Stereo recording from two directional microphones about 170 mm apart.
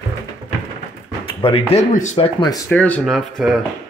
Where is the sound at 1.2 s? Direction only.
30° left (ahead or behind).